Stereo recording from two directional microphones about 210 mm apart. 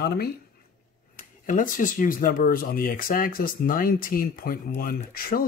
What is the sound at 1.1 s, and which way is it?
Speech, 40° left (ahead or behind).